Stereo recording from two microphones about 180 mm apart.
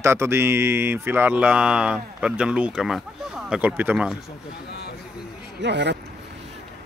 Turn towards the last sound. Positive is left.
turn(degrees=-75)  # may be behind; listen again after turning